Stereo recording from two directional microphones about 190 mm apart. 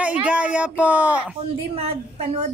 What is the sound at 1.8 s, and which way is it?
Speech, 30° right (ahead or behind).